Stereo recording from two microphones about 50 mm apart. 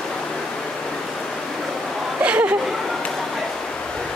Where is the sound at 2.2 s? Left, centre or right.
Right.